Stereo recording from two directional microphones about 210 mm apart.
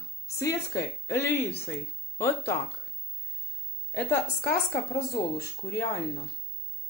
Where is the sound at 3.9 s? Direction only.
10° left (ahead or behind).